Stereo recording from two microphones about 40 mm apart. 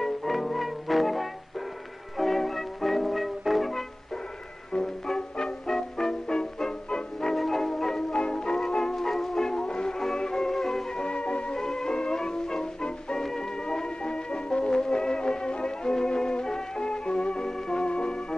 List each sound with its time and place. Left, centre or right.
0.0 s music: centre
4.7 s music: centre
8.1 s music: left
11.0 s music: left
11.5 s music: centre